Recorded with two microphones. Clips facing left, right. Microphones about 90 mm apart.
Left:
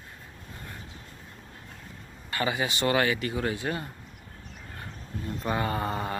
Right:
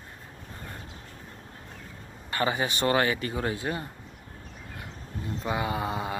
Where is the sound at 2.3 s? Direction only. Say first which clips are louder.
Right 1 dB; 35° right (ahead or behind).